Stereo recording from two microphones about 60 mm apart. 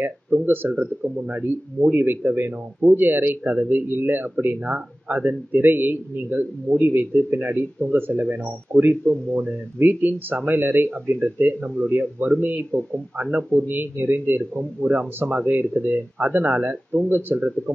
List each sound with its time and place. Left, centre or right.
0.0 s a man's voice: right
0.7 s a man's voice: right
14.6 s speech: right